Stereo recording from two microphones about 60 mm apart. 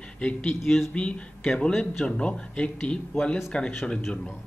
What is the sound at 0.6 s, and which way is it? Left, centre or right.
Speech, centre.